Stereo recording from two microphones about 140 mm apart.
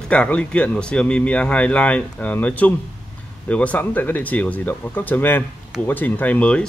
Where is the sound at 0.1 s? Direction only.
10° left (ahead or behind).